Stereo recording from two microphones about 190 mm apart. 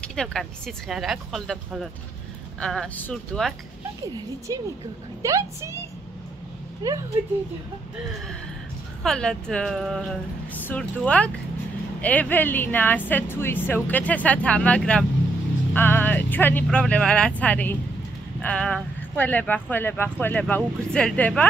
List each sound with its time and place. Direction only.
0.0 s speech: 5° left (ahead or behind)
4.5 s a woman's voice: 20° right (ahead or behind)
6.8 s a woman's voice: 20° right (ahead or behind)
9.0 s speech: 5° left (ahead or behind)
15.7 s vehicle: 10° left (ahead or behind)
16.6 s speech: 5° left (ahead or behind)